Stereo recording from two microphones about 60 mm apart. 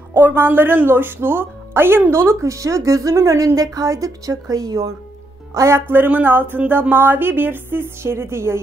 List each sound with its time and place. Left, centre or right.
0.1 s speech: right
5.5 s speech: right
5.8 s speech: right